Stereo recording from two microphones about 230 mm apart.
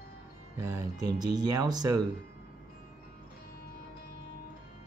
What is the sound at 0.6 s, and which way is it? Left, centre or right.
Speech, centre.